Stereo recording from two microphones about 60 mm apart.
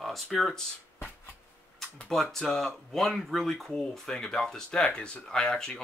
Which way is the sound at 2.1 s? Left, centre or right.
Centre.